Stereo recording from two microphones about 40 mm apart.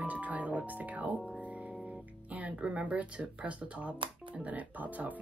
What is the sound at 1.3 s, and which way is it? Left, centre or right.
Music, right.